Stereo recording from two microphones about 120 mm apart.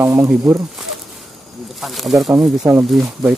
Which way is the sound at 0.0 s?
20° right (ahead or behind).